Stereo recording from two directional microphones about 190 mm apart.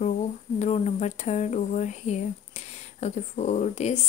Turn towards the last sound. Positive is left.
turn(degrees=35)  # may be behind; listen again after turning